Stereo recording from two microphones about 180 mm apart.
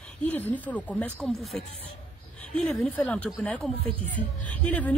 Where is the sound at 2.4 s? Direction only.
5° left (ahead or behind).